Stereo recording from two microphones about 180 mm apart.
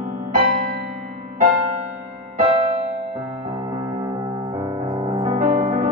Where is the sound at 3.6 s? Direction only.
20° right (ahead or behind).